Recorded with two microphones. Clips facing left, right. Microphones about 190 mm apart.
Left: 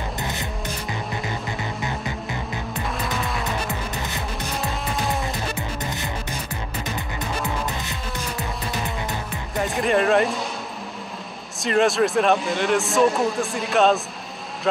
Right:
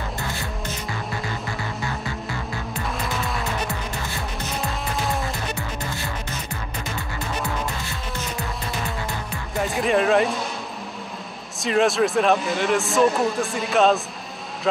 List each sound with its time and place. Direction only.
0.2 s music: 20° left (ahead or behind)
4.6 s music: centre (ahead or behind)
5.2 s music: 20° left (ahead or behind)
9.6 s speech: centre (ahead or behind)
11.6 s speech: centre (ahead or behind)